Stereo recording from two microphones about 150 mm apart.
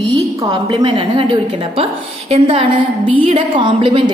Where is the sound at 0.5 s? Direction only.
35° right (ahead or behind).